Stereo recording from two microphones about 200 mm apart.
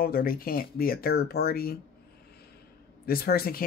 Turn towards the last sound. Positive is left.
turn(degrees=50)  # may be behind; listen again after turning